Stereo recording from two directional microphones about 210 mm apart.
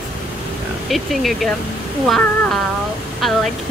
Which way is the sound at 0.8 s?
Centre (ahead or behind).